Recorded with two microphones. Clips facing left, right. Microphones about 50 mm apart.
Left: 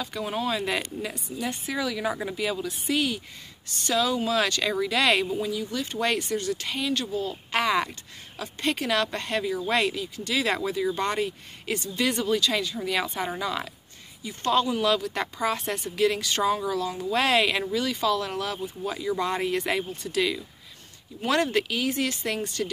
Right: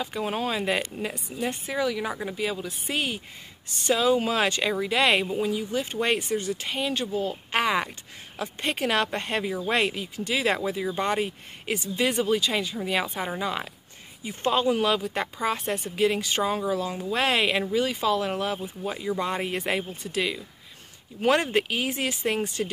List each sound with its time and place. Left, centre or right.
0.0 s speech: right; by 2.8 s centre
2.9 s speech: right
11.2 s speech: right
11.9 s speech: centre
13.4 s speech: right
15.1 s speech: centre
16.0 s speech: centre
17.0 s speech: centre
21.3 s speech: right